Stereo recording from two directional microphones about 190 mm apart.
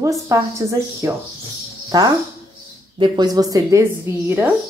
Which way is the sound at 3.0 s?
20° right (ahead or behind).